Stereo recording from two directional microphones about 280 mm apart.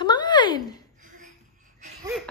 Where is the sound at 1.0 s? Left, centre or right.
Right.